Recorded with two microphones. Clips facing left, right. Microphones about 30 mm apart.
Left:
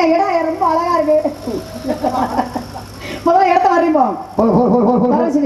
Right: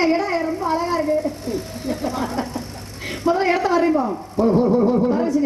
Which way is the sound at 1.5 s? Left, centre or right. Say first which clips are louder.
Left 4 dB; left.